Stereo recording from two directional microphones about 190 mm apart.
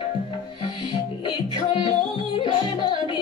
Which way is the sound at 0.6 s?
25° left (ahead or behind).